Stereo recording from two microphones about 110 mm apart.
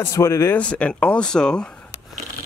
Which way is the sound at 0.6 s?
10° left (ahead or behind).